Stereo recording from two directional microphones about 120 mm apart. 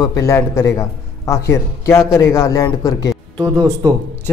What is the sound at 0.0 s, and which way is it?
A man's voice, 30° left (ahead or behind).